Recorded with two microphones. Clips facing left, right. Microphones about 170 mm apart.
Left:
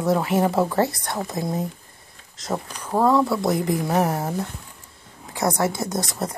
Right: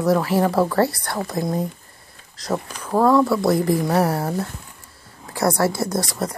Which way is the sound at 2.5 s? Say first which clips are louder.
Right 3 dB; 5° left (ahead or behind).